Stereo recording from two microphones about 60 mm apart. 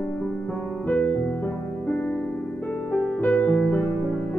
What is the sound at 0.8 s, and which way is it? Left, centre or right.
Music, left.